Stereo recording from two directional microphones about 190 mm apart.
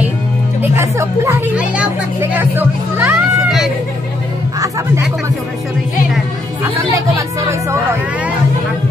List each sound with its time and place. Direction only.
0.6 s speech: 15° right (ahead or behind)
4.6 s speech: 15° right (ahead or behind)